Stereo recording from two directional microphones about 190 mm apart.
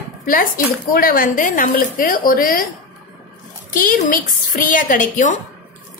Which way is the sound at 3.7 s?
45° left (ahead or behind).